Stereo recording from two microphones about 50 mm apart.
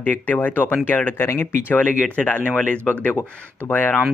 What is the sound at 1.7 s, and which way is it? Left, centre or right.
Speech, left.